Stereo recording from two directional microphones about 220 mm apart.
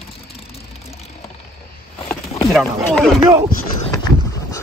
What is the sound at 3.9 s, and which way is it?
Vehicle, 15° left (ahead or behind).